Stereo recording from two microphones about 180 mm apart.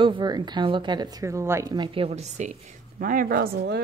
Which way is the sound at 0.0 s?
25° right (ahead or behind).